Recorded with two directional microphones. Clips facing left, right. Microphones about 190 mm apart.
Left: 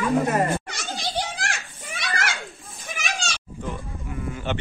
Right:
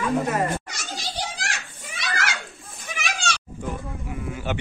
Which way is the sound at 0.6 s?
60° left (ahead or behind).